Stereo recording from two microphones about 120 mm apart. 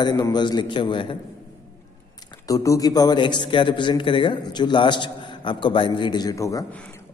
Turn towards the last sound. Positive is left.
turn(degrees=30)  # may be behind; listen again after turning